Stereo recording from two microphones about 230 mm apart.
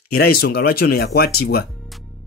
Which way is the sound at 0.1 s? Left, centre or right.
Left.